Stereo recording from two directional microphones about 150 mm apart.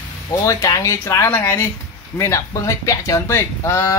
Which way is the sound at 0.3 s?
20° left (ahead or behind).